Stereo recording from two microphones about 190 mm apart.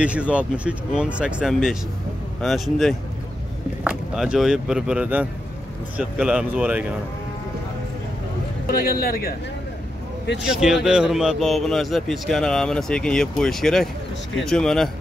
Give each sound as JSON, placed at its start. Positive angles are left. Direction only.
{"t": 0.0, "sound": "a man's voice", "side_deg": -5}
{"t": 8.6, "sound": "a man's voice", "side_deg": 50}
{"t": 10.5, "sound": "a man's voice", "side_deg": 0}